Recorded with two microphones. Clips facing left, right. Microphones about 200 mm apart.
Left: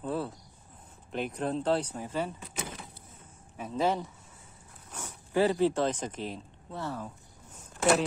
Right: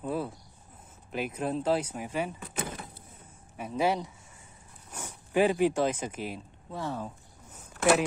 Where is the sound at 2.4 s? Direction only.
55° right (ahead or behind).